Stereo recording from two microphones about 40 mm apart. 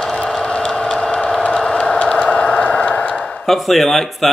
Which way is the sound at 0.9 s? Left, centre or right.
Left.